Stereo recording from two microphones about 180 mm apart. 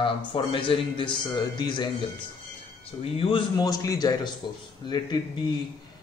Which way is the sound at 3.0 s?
30° left (ahead or behind).